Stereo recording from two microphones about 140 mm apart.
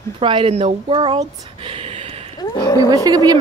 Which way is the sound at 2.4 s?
25° left (ahead or behind).